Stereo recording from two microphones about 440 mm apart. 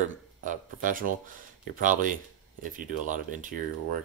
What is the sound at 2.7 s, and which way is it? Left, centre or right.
Speech, centre.